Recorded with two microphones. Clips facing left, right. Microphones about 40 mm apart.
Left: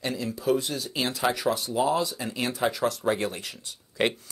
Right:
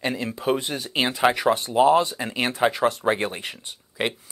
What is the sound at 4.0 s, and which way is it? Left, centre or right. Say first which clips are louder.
Speech: left 1 dB; centre.